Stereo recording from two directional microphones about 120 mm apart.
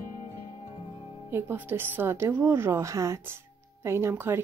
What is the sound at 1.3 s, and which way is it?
Speech, 20° right (ahead or behind).